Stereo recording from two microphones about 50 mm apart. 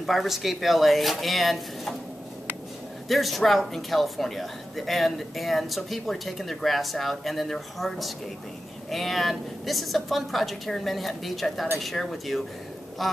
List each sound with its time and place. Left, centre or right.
0.0 s speech: centre
3.1 s speech: centre